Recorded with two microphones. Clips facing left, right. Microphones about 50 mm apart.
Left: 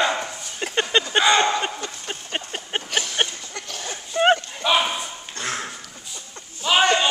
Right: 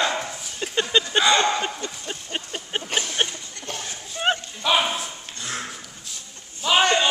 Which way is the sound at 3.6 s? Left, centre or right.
Left.